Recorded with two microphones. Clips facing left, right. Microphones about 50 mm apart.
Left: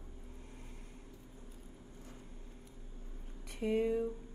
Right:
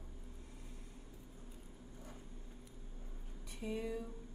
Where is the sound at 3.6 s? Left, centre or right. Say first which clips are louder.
Left 9 dB; left.